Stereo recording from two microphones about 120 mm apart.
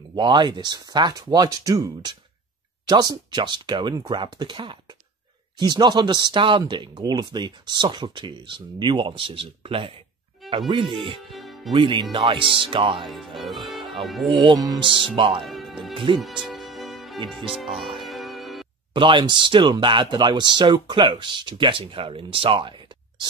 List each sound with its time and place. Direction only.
0.1 s speech: 40° right (ahead or behind)
11.2 s music: centre (ahead or behind)
11.7 s speech: 45° right (ahead or behind)
13.0 s speech: centre (ahead or behind)
14.4 s speech: 35° right (ahead or behind)
15.4 s speech: centre (ahead or behind)
16.2 s music: centre (ahead or behind)
17.3 s speech: centre (ahead or behind)
17.9 s music: centre (ahead or behind)
18.9 s speech: 45° right (ahead or behind)